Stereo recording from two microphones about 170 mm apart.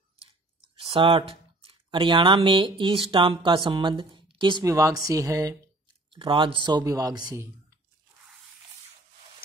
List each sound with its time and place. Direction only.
0.7 s speech: 30° right (ahead or behind)